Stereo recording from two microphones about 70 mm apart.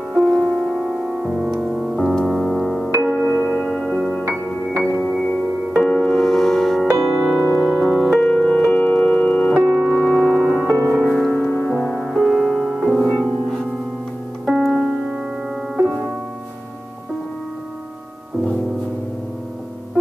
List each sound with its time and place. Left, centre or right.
0.1 s music: centre
4.2 s music: right
4.8 s music: centre
7.5 s piano: centre
8.2 s music: centre
9.5 s music: centre
9.9 s music: centre
10.7 s music: right
11.1 s music: centre
11.4 s music: left
11.8 s music: centre
14.4 s music: centre